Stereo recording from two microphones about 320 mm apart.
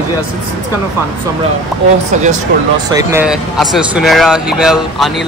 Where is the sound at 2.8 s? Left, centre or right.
Centre.